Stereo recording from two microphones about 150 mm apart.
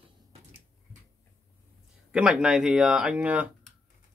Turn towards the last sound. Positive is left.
turn(degrees=-10)  # may be behind; listen again after turning